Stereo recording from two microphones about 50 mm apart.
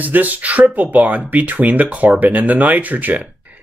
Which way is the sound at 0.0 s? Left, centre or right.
Right.